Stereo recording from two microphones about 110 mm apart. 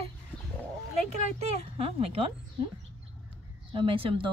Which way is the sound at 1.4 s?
70° right (ahead or behind).